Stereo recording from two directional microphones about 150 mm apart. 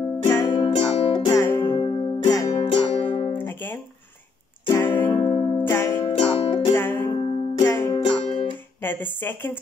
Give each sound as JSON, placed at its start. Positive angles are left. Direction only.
{"t": 0.4, "sound": "music", "side_deg": 30}
{"t": 2.2, "sound": "music", "side_deg": 25}
{"t": 3.3, "sound": "music", "side_deg": 15}
{"t": 5.0, "sound": "music", "side_deg": 30}
{"t": 5.8, "sound": "music", "side_deg": 15}
{"t": 6.0, "sound": "music", "side_deg": 35}
{"t": 6.7, "sound": "music", "side_deg": 15}
{"t": 7.1, "sound": "music", "side_deg": 35}
{"t": 7.6, "sound": "music", "side_deg": 20}
{"t": 8.0, "sound": "music", "side_deg": 35}
{"t": 8.8, "sound": "speech", "side_deg": 15}